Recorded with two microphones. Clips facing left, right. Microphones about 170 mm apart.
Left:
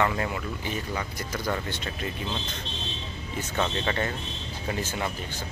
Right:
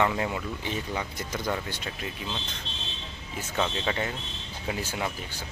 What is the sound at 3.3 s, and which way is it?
Speech, 5° right (ahead or behind).